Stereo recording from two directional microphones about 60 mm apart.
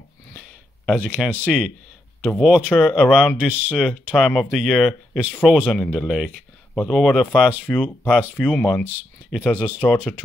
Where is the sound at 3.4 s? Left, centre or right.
Right.